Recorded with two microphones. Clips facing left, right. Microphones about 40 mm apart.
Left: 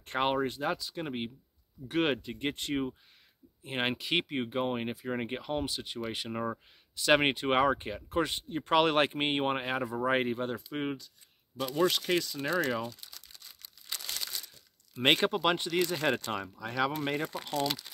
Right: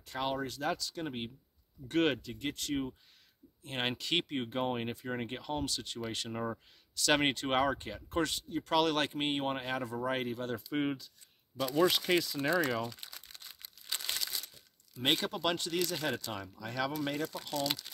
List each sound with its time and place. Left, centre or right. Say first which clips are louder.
0.0 s speech: left 6 dB; left
0.5 s speech: left 2 dB; centre
2.2 s speech: left 3 dB; left
10.5 s speech: right 1 dB; centre
13.9 s crumpling: right 2 dB; right
15.0 s speech: left 6 dB; left
16.0 s speech: left 6 dB; left
16.5 s speech: left 3 dB; left
17.6 s speech: left 2 dB; centre